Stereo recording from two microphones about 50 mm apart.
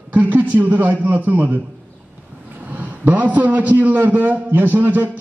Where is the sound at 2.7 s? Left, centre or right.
Right.